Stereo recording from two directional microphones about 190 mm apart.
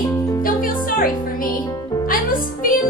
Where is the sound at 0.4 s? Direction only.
50° left (ahead or behind).